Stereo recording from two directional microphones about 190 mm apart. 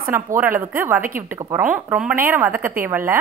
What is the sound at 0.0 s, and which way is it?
A woman's voice, 10° right (ahead or behind).